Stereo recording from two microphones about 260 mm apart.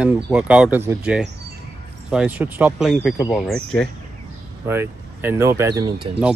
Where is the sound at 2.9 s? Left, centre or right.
Centre.